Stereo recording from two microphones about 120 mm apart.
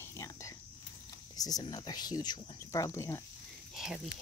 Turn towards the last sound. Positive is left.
turn(degrees=-5)  # may be behind; listen again after turning